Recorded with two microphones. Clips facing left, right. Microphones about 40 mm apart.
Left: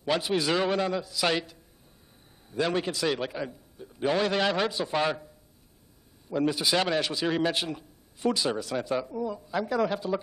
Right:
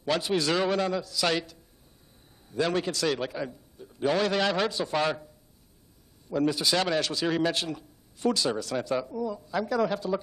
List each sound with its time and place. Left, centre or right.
0.0 s a man's voice: centre
6.3 s a man's voice: centre